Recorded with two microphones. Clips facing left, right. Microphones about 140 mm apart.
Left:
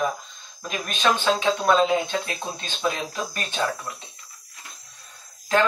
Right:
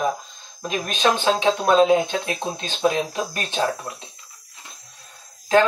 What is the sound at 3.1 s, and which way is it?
Speech, 30° right (ahead or behind).